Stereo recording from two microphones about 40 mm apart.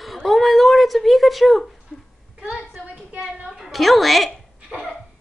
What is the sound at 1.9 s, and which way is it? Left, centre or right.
Speech, left.